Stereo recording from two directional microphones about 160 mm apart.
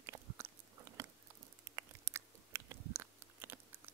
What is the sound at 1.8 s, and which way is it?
Chewing, 15° right (ahead or behind).